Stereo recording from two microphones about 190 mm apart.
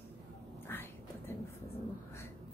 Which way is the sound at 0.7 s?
10° left (ahead or behind).